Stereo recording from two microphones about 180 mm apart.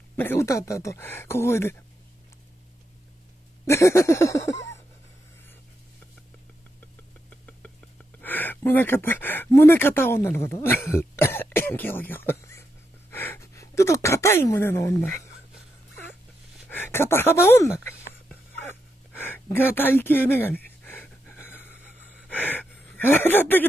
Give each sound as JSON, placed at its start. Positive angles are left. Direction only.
{"t": 0.1, "sound": "speech", "side_deg": 10}
{"t": 3.6, "sound": "a sound", "side_deg": 15}
{"t": 8.2, "sound": "speech", "side_deg": 10}
{"t": 16.6, "sound": "speech", "side_deg": 10}
{"t": 19.1, "sound": "gasp", "side_deg": 10}
{"t": 22.3, "sound": "a sound", "side_deg": 10}